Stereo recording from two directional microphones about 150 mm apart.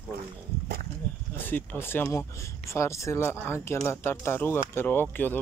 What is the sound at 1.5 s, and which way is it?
Speech, 15° left (ahead or behind).